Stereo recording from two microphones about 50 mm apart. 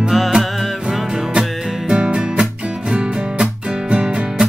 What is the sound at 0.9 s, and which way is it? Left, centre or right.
Music, centre.